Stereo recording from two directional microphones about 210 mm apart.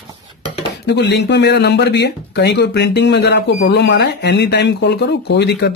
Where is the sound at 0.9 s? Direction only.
55° left (ahead or behind).